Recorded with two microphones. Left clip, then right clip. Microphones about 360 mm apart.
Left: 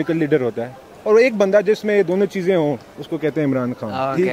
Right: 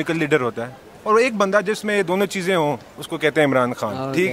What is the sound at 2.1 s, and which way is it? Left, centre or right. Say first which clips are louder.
Speech: left 2 dB; right.